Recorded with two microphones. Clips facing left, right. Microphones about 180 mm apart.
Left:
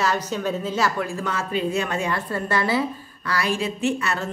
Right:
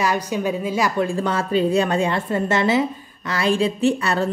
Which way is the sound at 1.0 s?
30° right (ahead or behind).